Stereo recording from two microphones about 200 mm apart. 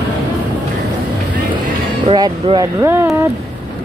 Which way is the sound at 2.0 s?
25° right (ahead or behind).